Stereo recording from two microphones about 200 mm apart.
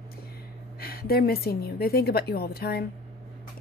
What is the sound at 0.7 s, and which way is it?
A woman's voice, 50° left (ahead or behind).